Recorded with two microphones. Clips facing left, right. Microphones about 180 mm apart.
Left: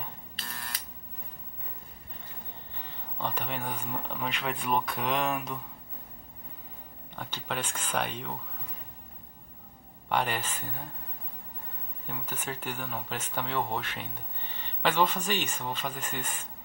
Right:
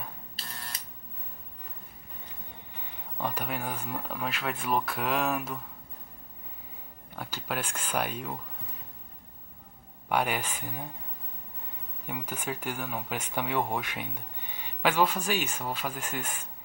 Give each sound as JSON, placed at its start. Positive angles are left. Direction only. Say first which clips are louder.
{"t": 2.7, "sound": "speech", "louder": "left 1 dB", "side_deg": -10}
{"t": 7.2, "sound": "speech", "louder": "right 1 dB", "side_deg": -10}
{"t": 10.0, "sound": "speech", "louder": "right 1 dB", "side_deg": -10}
{"t": 12.1, "sound": "speech", "louder": "right 3 dB", "side_deg": -10}